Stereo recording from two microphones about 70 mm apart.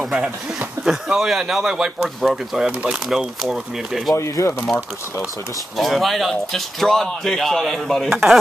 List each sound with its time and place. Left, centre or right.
0.0 s a man's voice: centre
4.1 s speech: left
5.8 s speech: centre